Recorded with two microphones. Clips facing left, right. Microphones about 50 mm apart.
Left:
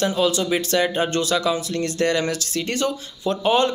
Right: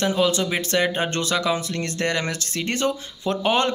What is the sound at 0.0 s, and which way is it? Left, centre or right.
Speech, right.